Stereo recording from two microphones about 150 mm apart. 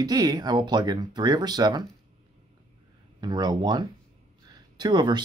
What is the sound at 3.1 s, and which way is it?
Speech, 30° right (ahead or behind).